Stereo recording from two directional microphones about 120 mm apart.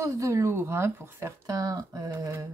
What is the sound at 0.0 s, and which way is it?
Speech, 25° right (ahead or behind).